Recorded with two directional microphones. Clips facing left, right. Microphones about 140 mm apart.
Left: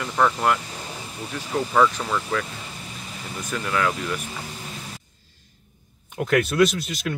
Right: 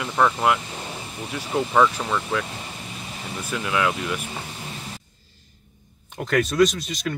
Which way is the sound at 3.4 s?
5° right (ahead or behind).